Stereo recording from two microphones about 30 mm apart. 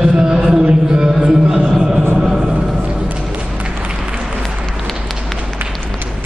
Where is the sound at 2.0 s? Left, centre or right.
Centre.